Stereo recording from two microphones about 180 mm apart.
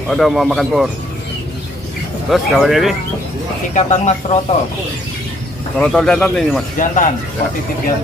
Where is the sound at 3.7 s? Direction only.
40° left (ahead or behind).